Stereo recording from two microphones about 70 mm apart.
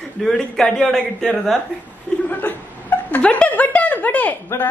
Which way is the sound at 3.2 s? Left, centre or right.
Centre.